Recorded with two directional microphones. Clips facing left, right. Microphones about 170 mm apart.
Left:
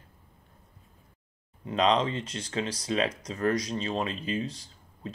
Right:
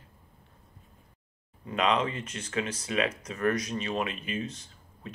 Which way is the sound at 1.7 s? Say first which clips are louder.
Left 2 dB; 35° left (ahead or behind).